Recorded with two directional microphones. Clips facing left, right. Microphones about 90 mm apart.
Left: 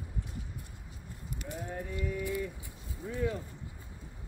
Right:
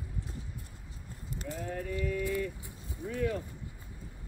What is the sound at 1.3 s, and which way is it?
Clip-clop, 30° right (ahead or behind).